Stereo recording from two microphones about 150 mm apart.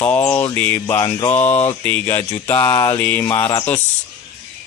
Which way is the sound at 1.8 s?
15° left (ahead or behind).